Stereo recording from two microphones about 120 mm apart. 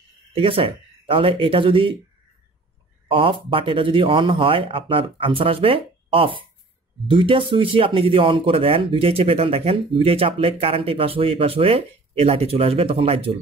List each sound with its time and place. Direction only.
0.3 s speech: 50° right (ahead or behind)
3.1 s speech: 45° right (ahead or behind)